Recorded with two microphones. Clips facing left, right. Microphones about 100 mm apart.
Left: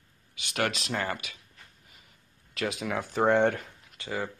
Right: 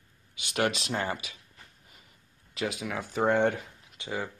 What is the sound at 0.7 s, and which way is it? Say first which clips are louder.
Speech: even; 25° right (ahead or behind).